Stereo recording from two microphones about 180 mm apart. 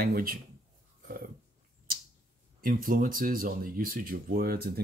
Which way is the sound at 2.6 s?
50° right (ahead or behind).